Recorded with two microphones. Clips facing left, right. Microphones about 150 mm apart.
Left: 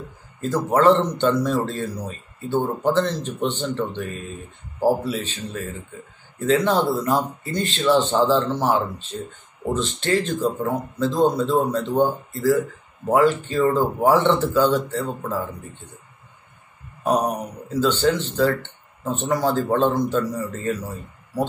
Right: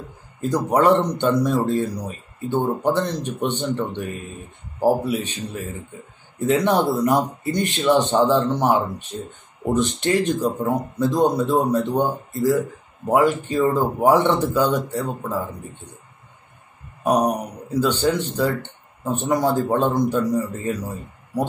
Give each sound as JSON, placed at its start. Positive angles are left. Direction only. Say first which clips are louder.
{"t": 0.4, "sound": "speech", "louder": "even", "side_deg": -15}
{"t": 17.0, "sound": "speech", "louder": "right 2 dB", "side_deg": -15}